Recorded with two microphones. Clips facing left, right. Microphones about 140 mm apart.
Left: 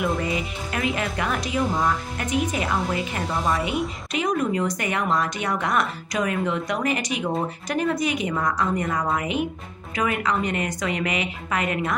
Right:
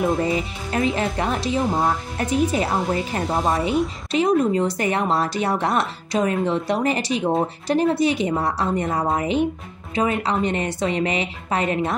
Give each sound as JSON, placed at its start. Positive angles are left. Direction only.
{"t": 0.0, "sound": "speech", "side_deg": -35}